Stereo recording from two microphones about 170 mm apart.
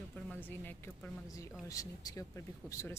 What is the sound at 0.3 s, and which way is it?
A woman's voice, 10° left (ahead or behind).